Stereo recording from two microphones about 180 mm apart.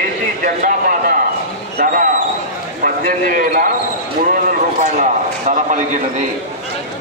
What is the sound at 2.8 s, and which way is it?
Speech, 50° right (ahead or behind).